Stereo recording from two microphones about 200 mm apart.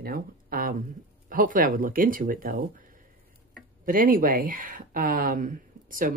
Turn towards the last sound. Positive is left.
turn(degrees=-40)  # may be behind; listen again after turning